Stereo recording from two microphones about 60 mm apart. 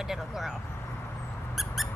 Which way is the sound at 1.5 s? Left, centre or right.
Centre.